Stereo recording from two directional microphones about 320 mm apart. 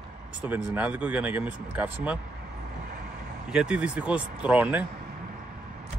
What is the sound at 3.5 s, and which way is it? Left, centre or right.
Speech, centre.